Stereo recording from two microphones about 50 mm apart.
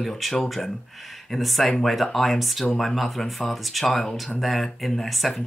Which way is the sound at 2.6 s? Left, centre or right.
Centre.